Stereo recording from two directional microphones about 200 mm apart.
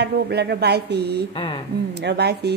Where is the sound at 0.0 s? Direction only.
55° right (ahead or behind).